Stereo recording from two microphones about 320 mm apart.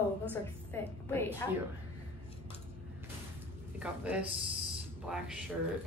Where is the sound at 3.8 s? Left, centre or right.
Centre.